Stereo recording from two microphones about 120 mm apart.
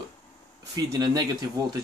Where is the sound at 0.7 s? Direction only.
35° right (ahead or behind).